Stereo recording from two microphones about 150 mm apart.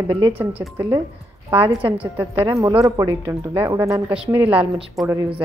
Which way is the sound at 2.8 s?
20° right (ahead or behind).